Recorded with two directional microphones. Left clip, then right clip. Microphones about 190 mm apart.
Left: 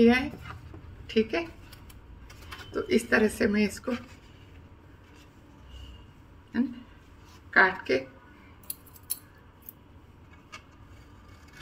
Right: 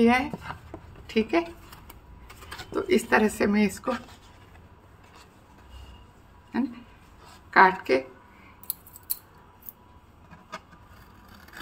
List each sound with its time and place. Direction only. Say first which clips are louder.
0.0 s a woman's voice: right 1 dB; 35° right (ahead or behind)
2.7 s speech: right 3 dB; 35° right (ahead or behind)
7.5 s speech: right 4 dB; 35° right (ahead or behind)